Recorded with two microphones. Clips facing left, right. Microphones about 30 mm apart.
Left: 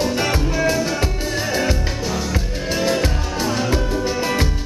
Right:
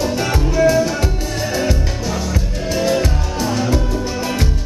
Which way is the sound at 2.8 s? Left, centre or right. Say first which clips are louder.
Right 3 dB; centre.